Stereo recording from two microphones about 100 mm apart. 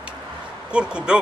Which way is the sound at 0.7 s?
10° right (ahead or behind).